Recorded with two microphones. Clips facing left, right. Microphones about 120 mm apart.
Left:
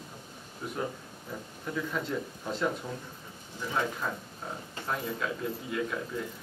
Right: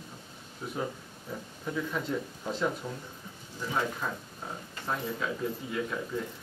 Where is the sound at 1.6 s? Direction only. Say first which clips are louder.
Even; 5° right (ahead or behind).